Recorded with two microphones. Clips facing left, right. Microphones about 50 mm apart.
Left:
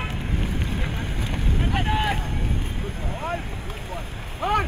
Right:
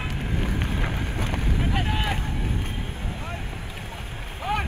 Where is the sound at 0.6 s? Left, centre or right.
Right.